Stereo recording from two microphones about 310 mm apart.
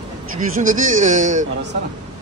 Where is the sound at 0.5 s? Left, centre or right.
Right.